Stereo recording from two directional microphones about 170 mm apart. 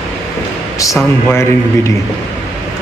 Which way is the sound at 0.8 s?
20° left (ahead or behind).